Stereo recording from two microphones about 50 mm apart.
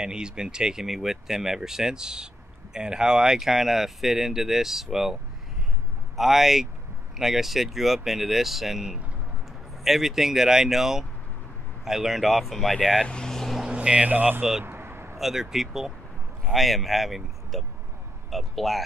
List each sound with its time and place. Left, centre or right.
0.0 s speech: centre
6.1 s speech: centre
13.1 s vehicle: centre
13.7 s vehicle: right
14.1 s speech: right
14.6 s vehicle: right
15.1 s speech: centre